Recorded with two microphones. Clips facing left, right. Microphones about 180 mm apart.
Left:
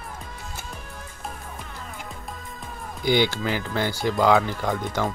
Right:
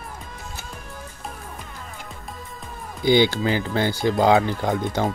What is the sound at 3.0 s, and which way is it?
Speech, 25° right (ahead or behind).